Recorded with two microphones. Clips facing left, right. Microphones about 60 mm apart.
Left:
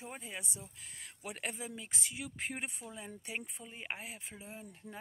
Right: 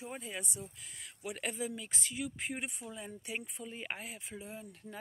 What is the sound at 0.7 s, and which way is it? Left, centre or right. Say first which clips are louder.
Speech: right 1 dB; left.